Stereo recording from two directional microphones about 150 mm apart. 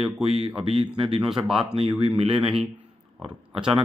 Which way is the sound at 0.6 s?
40° right (ahead or behind).